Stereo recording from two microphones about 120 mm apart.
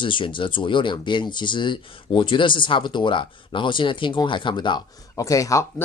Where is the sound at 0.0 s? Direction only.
45° left (ahead or behind).